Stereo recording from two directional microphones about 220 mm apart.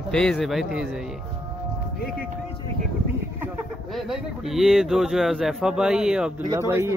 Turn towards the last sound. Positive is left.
turn(degrees=-10)  # may be behind; listen again after turning